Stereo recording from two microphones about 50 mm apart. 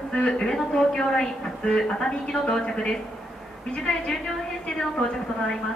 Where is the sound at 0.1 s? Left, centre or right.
Centre.